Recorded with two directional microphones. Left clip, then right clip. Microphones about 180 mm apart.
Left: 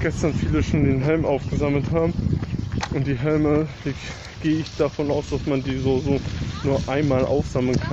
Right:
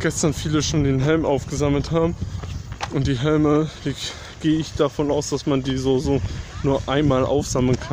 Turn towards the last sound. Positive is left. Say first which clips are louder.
# right 1 dB
turn(degrees=-25)  # may be behind; listen again after turning